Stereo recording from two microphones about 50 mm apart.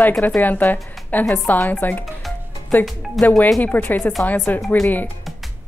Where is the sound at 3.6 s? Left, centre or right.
Left.